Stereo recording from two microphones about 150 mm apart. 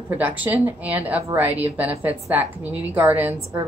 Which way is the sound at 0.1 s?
10° right (ahead or behind).